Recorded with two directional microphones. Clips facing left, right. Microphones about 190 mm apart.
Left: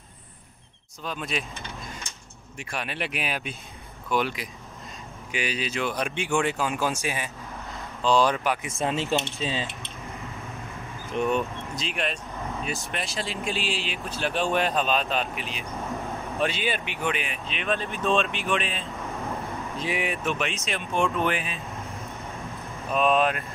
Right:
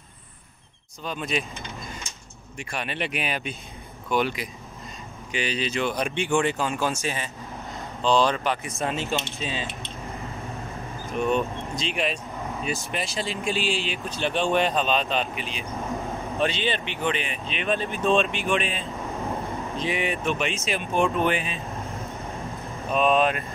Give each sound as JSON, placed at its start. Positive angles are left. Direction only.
{"t": 1.0, "sound": "speech", "side_deg": 0}
{"t": 2.6, "sound": "speech", "side_deg": 0}
{"t": 8.8, "sound": "speech", "side_deg": 20}
{"t": 11.7, "sound": "speech", "side_deg": 0}
{"t": 22.9, "sound": "speech", "side_deg": 0}